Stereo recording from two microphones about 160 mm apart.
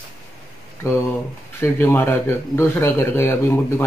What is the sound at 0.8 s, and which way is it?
Speech, 15° left (ahead or behind).